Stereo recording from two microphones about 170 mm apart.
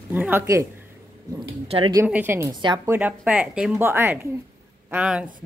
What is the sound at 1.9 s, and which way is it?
A woman's voice, 15° right (ahead or behind).